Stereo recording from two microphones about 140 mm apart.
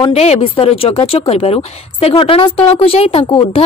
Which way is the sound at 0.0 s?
50° left (ahead or behind).